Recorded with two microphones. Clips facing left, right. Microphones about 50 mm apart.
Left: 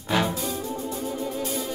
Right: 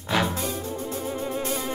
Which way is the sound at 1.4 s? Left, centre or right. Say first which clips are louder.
Right 1 dB; right.